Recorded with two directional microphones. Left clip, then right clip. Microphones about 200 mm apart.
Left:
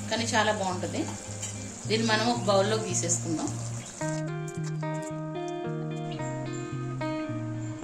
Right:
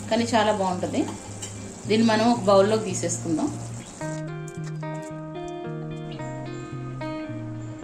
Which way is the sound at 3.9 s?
Centre (ahead or behind).